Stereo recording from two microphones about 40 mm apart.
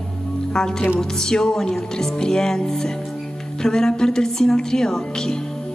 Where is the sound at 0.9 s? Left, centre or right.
Centre.